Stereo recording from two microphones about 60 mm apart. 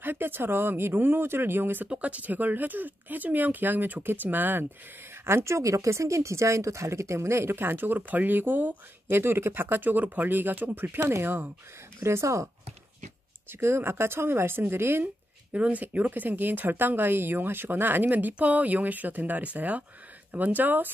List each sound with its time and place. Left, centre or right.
0.0 s speech: right
1.9 s speech: right
5.2 s speech: right
9.1 s speech: right
12.0 s speech: right
13.5 s speech: right
15.5 s speech: right